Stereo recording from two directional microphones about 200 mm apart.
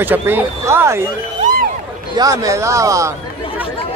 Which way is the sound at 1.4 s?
40° right (ahead or behind).